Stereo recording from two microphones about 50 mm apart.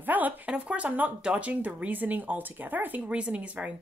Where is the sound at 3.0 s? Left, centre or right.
Right.